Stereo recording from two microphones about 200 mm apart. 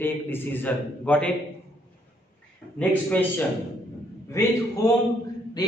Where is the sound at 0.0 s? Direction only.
10° left (ahead or behind).